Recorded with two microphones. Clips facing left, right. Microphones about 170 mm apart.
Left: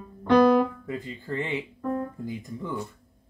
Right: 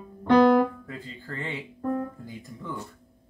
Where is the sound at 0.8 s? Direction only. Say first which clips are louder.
Left 5 dB; 20° left (ahead or behind).